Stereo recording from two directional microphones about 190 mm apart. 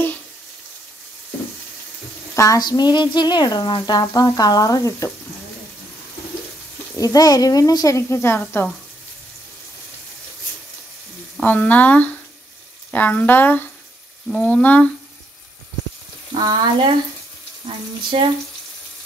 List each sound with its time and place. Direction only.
2.3 s speech: 15° left (ahead or behind)
7.0 s speech: 20° left (ahead or behind)
11.3 s speech: 10° left (ahead or behind)
16.3 s speech: 25° right (ahead or behind)
18.1 s speech: 30° right (ahead or behind)